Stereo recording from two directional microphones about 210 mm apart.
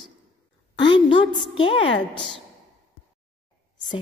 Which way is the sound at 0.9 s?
25° left (ahead or behind).